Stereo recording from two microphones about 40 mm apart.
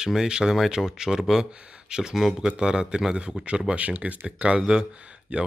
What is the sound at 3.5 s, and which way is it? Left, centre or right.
Speech, right.